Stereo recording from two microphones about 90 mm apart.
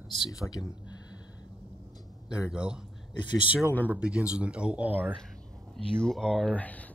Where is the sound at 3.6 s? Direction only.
20° left (ahead or behind).